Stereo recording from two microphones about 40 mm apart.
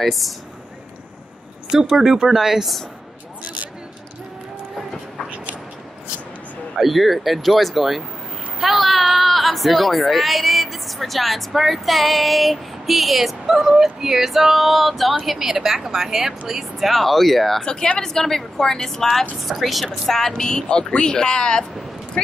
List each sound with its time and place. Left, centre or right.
0.0 s speech: centre
1.7 s a woman's voice: centre
6.8 s speech: centre
15.2 s a woman's voice: centre
16.9 s speech: centre
17.6 s a woman's voice: left
20.4 s speech: centre